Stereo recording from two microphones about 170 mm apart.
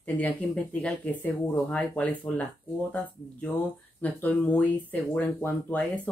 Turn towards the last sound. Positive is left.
turn(degrees=10)  # may be behind; listen again after turning